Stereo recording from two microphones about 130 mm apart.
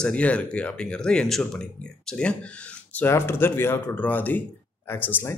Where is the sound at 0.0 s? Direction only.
10° left (ahead or behind).